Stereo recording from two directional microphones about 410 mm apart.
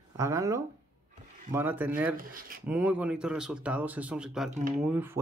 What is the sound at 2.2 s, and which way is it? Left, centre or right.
Speech, right.